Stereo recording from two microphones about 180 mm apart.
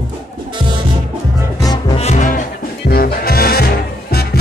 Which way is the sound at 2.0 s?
40° left (ahead or behind).